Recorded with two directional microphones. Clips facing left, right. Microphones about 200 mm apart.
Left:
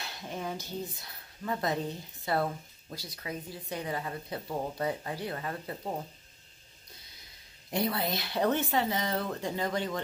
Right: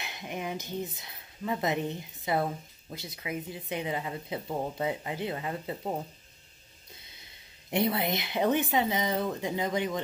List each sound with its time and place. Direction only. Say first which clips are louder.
0.0 s speech: right 1 dB; 20° right (ahead or behind)
7.7 s speech: right 3 dB; 25° right (ahead or behind)